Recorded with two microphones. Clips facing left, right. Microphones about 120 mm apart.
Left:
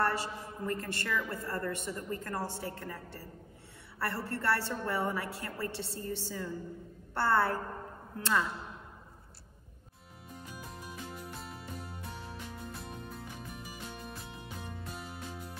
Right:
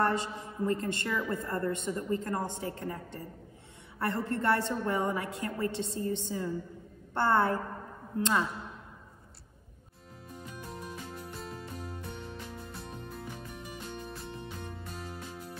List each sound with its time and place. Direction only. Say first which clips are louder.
0.0 s a man's voice: right 3 dB; 25° right (ahead or behind)
10.5 s music: right 4 dB; 5° left (ahead or behind)